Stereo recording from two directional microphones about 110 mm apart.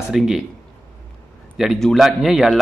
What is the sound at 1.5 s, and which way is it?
Speech, 5° right (ahead or behind).